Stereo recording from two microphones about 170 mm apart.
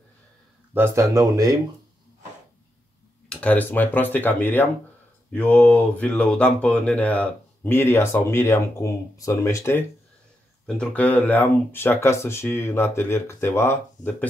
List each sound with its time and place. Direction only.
0.7 s speech: 15° right (ahead or behind)
3.3 s speech: 10° left (ahead or behind)